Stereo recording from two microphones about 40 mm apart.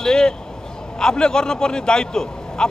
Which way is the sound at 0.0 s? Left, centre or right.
Centre.